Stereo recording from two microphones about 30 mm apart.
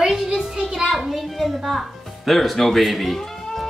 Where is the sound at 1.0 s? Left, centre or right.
Centre.